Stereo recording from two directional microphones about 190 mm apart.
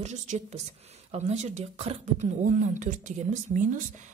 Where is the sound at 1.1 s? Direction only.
35° right (ahead or behind).